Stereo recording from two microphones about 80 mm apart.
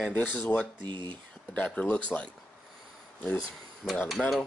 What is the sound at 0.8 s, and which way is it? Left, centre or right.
Speech, right.